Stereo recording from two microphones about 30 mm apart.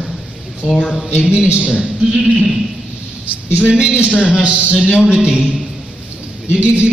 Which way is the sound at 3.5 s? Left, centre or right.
Right.